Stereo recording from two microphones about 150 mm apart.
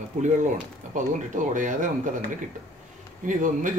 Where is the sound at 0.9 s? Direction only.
55° right (ahead or behind).